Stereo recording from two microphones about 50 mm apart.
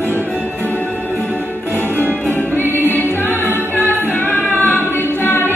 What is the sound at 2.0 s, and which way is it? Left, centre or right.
Music, right.